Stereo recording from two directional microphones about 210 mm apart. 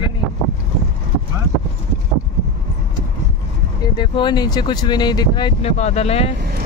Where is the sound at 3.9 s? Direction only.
20° left (ahead or behind).